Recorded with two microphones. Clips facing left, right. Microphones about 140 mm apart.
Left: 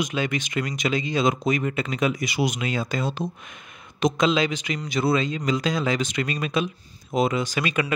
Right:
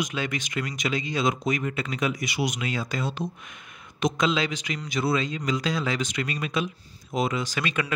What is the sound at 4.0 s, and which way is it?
Speech, 25° left (ahead or behind).